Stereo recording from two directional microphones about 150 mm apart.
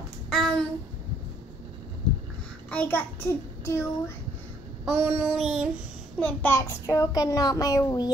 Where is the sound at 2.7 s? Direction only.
10° left (ahead or behind).